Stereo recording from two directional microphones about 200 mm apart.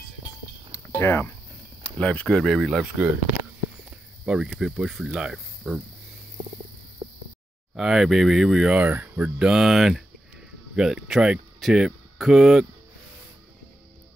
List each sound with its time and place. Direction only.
0.7 s a sound: 10° left (ahead or behind)
1.8 s speech: 5° left (ahead or behind)
4.3 s speech: 5° right (ahead or behind)
7.7 s speech: centre (ahead or behind)